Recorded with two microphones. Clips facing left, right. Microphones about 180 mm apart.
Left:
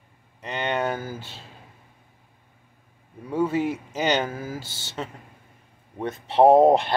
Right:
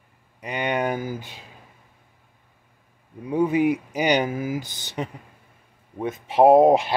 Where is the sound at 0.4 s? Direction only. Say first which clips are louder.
Right 1 dB; 10° right (ahead or behind).